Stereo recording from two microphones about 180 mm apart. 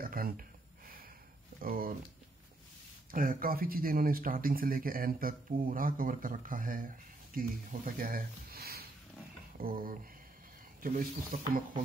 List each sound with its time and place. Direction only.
0.0 s a sound: 55° right (ahead or behind)
1.6 s speech: 55° right (ahead or behind)
3.1 s speech: 50° right (ahead or behind)